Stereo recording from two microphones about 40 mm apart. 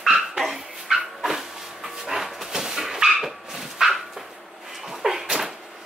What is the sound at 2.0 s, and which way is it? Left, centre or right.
Dog, centre.